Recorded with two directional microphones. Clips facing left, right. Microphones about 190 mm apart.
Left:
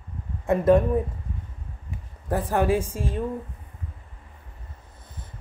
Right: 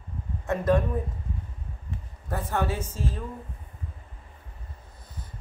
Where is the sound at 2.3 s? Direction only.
35° left (ahead or behind).